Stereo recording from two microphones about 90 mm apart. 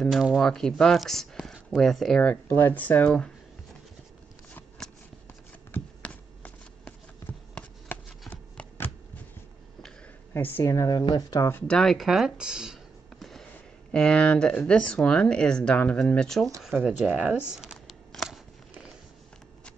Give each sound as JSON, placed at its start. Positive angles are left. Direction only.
{"t": 0.0, "sound": "speech", "side_deg": -5}
{"t": 2.7, "sound": "speech", "side_deg": 15}
{"t": 4.8, "sound": "shuffling cards", "side_deg": 5}
{"t": 5.7, "sound": "a sound", "side_deg": 15}
{"t": 10.3, "sound": "speech", "side_deg": 20}
{"t": 10.6, "sound": "speech", "side_deg": 35}
{"t": 11.6, "sound": "speech", "side_deg": 5}
{"t": 13.2, "sound": "a sound", "side_deg": 5}
{"t": 13.9, "sound": "speech", "side_deg": 10}
{"t": 17.1, "sound": "speech", "side_deg": -15}
{"t": 17.5, "sound": "shuffling cards", "side_deg": -5}